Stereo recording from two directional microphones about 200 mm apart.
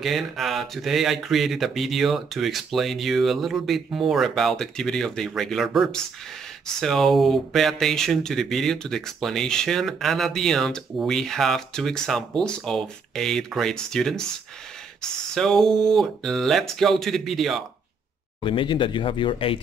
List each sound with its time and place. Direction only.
0.0 s speech: centre (ahead or behind)
18.4 s speech: 25° left (ahead or behind)